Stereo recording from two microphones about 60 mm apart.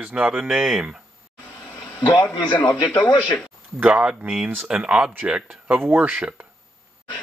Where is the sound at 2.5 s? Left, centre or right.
Left.